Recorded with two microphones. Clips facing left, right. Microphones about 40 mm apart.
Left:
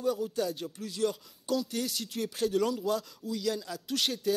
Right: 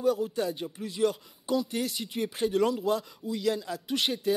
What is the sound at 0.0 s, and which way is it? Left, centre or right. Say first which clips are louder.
Speech: right 3 dB; centre.